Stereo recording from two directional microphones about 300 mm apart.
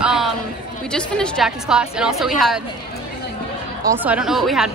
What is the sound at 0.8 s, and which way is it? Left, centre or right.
A woman's voice, centre.